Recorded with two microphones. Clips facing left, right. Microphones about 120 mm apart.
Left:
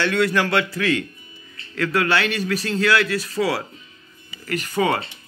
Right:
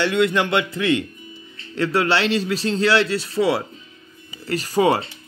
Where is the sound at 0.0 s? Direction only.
20° right (ahead or behind).